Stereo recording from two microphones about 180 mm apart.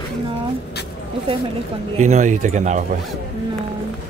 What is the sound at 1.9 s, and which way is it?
Speech, 40° right (ahead or behind).